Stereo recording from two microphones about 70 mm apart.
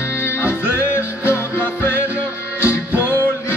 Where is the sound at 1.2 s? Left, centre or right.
Left.